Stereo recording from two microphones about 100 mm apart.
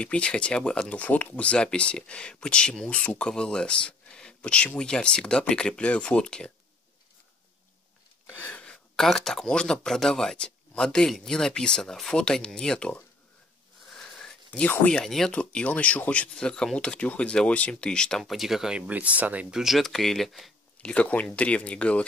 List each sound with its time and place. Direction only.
0.0 s speech: 10° left (ahead or behind)
8.4 s a sound: 15° left (ahead or behind)
8.9 s speech: 5° left (ahead or behind); by 19.6 s 15° right (ahead or behind)
19.6 s speech: centre (ahead or behind)
20.9 s speech: 15° left (ahead or behind)